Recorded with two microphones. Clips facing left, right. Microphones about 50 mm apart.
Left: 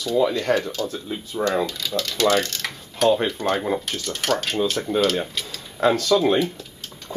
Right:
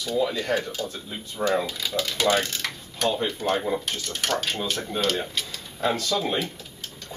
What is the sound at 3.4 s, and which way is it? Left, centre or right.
Speech, left.